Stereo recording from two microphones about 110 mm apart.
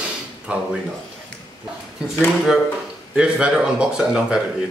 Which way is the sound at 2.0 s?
5° right (ahead or behind).